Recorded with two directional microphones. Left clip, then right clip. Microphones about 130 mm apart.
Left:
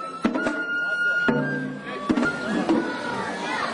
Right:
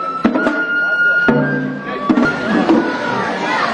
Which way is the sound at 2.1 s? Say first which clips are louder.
Right 9 dB; 40° left (ahead or behind).